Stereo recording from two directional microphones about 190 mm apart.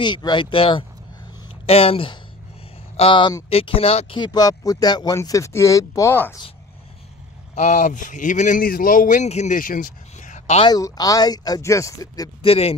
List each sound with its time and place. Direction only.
0.0 s speech: 25° left (ahead or behind)
7.5 s speech: 40° left (ahead or behind)
10.7 s speech: 20° left (ahead or behind)
12.4 s speech: 30° left (ahead or behind)